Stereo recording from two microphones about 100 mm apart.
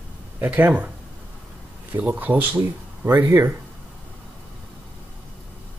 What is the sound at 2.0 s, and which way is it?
Speech, 15° right (ahead or behind).